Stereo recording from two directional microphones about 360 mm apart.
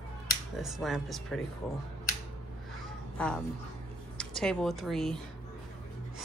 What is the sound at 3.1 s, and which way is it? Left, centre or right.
Speech, centre.